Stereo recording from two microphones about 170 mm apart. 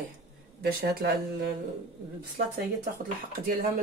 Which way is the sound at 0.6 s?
65° right (ahead or behind).